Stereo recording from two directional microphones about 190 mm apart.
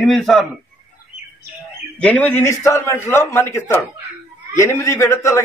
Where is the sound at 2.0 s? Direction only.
10° left (ahead or behind).